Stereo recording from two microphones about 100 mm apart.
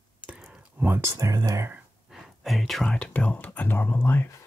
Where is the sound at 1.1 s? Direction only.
35° right (ahead or behind).